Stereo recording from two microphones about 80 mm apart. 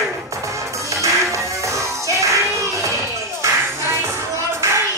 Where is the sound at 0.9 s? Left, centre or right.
Right.